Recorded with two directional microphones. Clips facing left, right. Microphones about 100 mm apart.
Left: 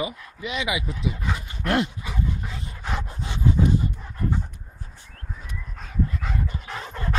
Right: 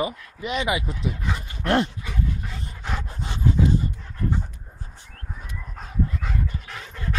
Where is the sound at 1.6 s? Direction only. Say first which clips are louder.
Right 2 dB; 30° right (ahead or behind).